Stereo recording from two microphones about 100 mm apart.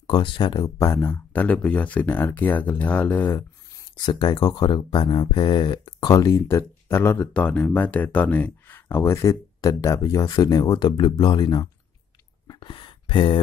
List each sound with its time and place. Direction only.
0.0 s speech: 50° left (ahead or behind)
0.7 s speech: 25° left (ahead or behind)
4.0 s speech: 45° left (ahead or behind); by 9.3 s 25° left (ahead or behind)
9.3 s speech: 35° left (ahead or behind)
12.5 s a sound: 55° left (ahead or behind)